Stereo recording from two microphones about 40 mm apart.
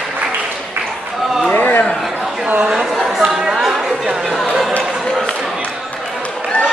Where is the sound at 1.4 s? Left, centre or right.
Left.